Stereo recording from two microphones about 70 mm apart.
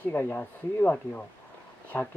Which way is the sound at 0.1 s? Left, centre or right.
Left.